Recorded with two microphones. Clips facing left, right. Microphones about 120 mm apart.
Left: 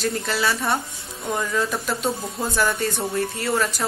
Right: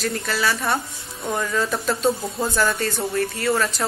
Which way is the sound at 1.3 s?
10° left (ahead or behind).